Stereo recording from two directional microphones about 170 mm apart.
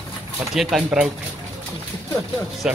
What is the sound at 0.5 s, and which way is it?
Speech, centre (ahead or behind).